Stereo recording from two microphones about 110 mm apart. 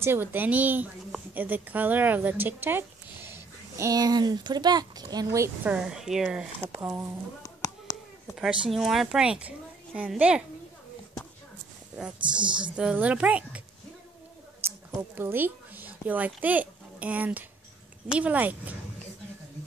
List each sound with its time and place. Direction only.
0.0 s a woman's voice: 20° right (ahead or behind)
5.6 s speech: 10° right (ahead or behind)
6.8 s speech: 20° right (ahead or behind)
7.4 s a sound: 30° left (ahead or behind)
8.4 s a woman's voice: 5° right (ahead or behind)
12.0 s a woman's voice: 10° right (ahead or behind)
14.6 s a sound: 20° right (ahead or behind)
15.0 s a woman's voice: 20° right (ahead or behind)